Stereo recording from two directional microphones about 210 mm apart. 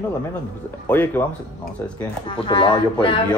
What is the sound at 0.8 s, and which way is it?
Speech, 10° left (ahead or behind).